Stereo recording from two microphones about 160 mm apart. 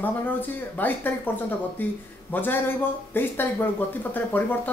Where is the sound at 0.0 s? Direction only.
10° left (ahead or behind).